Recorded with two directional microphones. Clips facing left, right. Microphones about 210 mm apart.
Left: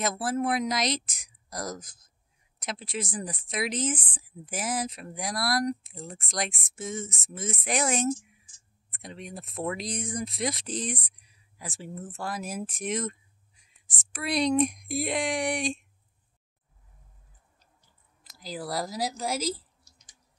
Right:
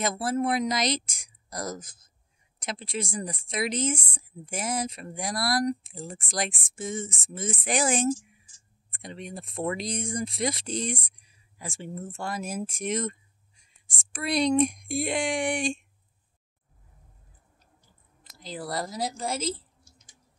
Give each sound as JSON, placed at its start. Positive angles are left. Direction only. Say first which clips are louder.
{"t": 0.0, "sound": "speech", "louder": "right 1 dB", "side_deg": 0}
{"t": 18.4, "sound": "speech", "louder": "even", "side_deg": 5}
{"t": 19.4, "sound": "a sound", "louder": "even", "side_deg": -25}